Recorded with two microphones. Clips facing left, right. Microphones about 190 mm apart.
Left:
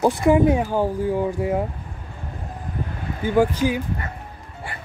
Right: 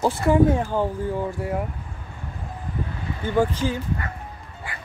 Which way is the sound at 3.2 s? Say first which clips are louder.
Left 3 dB; 10° left (ahead or behind).